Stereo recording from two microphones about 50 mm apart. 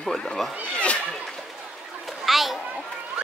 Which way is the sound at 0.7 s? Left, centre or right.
Left.